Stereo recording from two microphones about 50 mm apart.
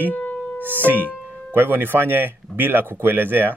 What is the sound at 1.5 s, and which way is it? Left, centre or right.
Speech, right.